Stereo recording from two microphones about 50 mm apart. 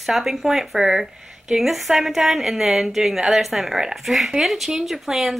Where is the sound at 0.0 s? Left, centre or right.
Centre.